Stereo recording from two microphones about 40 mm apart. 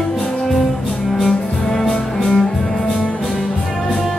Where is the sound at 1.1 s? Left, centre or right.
Centre.